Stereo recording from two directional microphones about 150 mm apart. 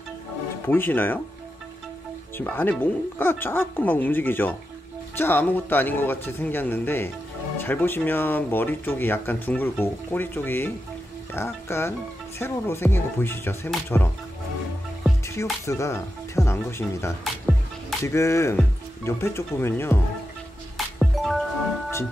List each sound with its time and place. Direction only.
0.7 s speech: 15° left (ahead or behind)
2.3 s speech: 15° left (ahead or behind)
15.6 s speech: 20° left (ahead or behind)
17.2 s music: centre (ahead or behind)
18.0 s speech: 20° left (ahead or behind)
20.7 s music: centre (ahead or behind)